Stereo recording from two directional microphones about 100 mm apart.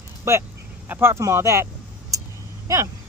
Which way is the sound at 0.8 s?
25° right (ahead or behind).